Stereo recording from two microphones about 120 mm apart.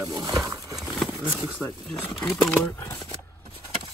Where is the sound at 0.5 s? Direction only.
25° right (ahead or behind).